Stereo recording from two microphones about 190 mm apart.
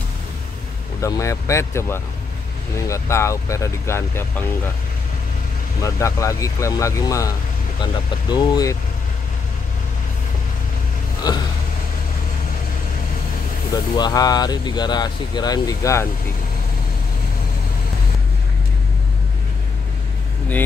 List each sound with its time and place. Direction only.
1.0 s speech: 15° left (ahead or behind)
5.8 s speech: 15° left (ahead or behind)
11.3 s speech: 20° left (ahead or behind)
13.9 s speech: 20° left (ahead or behind)